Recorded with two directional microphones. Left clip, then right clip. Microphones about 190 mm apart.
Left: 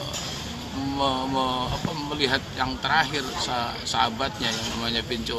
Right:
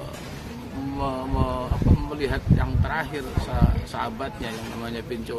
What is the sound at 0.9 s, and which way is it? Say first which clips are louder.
Speech: left 4 dB; 10° right (ahead or behind).